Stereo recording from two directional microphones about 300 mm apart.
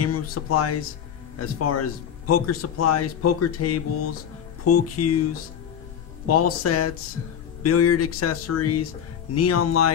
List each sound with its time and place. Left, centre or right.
0.0 s speech: left
6.2 s speech: left